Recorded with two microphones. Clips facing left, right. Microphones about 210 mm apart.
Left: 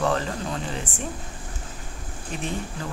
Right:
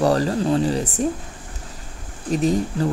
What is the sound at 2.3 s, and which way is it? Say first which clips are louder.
Speech: right 11 dB; 35° right (ahead or behind).